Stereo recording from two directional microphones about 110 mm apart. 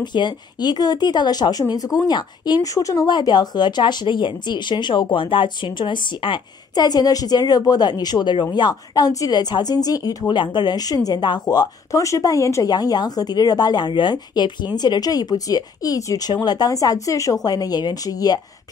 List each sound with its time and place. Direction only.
0.0 s a woman's voice: 40° left (ahead or behind)
12.7 s a woman's voice: 40° left (ahead or behind)